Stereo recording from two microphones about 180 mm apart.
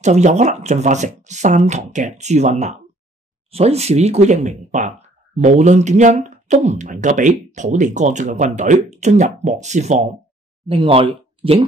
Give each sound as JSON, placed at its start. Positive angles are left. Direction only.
{"t": 0.0, "sound": "speech", "side_deg": -40}